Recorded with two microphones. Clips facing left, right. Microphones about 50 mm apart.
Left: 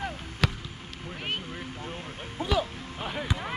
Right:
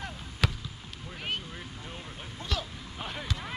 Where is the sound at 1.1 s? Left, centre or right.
Centre.